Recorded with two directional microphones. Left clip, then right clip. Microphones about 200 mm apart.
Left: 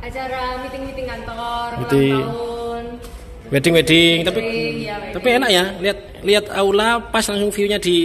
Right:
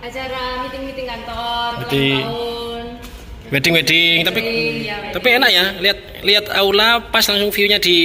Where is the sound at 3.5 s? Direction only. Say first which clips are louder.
Even; 20° left (ahead or behind).